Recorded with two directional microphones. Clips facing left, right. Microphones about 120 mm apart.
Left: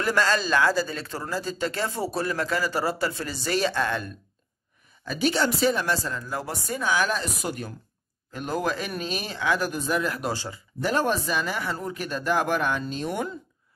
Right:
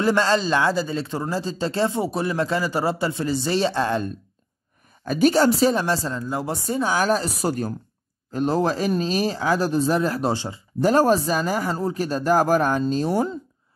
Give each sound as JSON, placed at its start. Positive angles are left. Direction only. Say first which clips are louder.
{"t": 0.0, "sound": "speech", "louder": "right 4 dB", "side_deg": -25}
{"t": 5.0, "sound": "speech", "louder": "right 7 dB", "side_deg": -45}
{"t": 10.3, "sound": "speech", "louder": "right 5 dB", "side_deg": -20}
{"t": 10.8, "sound": "speech", "louder": "right 7 dB", "side_deg": -40}